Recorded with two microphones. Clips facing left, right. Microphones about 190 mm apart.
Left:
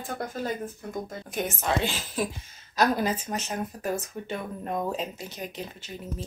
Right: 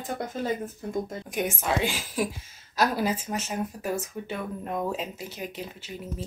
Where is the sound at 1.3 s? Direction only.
10° right (ahead or behind).